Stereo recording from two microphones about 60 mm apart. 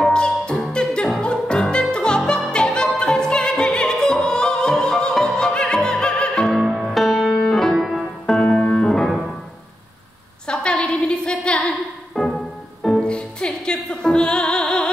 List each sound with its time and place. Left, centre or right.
0.1 s music: centre
3.0 s opera: centre
6.6 s music: centre
7.8 s piano: centre
8.4 s keyboard: centre
10.4 s a sound: centre
12.2 s music: centre
13.0 s music: centre